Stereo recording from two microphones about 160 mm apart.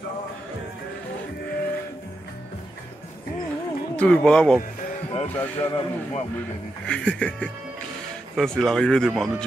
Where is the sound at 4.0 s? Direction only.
5° left (ahead or behind).